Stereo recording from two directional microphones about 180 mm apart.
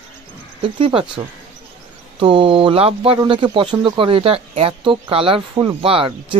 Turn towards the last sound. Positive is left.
turn(degrees=-30)  # may be behind; listen again after turning